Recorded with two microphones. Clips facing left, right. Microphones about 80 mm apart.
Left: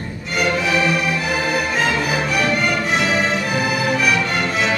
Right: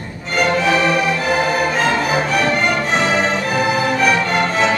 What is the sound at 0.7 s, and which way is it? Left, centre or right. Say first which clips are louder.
Music: right 3 dB; right.